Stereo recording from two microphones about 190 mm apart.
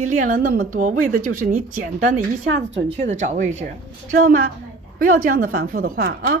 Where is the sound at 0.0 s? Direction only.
40° right (ahead or behind).